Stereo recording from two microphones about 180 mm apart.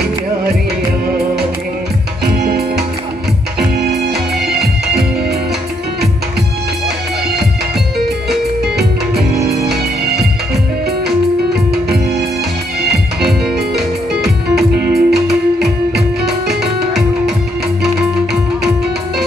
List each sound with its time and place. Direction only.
2.3 s music: 60° right (ahead or behind)
8.7 s music: 60° right (ahead or behind)
14.5 s music: 60° right (ahead or behind)
15.1 s music: centre (ahead or behind)